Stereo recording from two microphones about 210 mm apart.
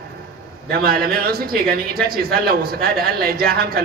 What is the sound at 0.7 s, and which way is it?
Speech, 45° right (ahead or behind).